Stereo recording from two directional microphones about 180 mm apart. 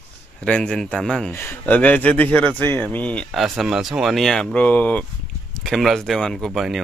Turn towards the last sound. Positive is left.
turn(degrees=0)  # may be behind; listen again after turning